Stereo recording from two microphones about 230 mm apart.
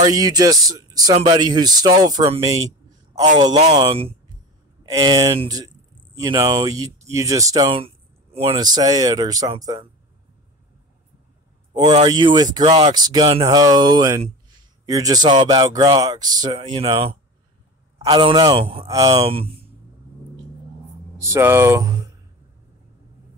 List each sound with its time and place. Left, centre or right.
0.0 s speech: centre
12.1 s speech: centre
21.2 s speech: centre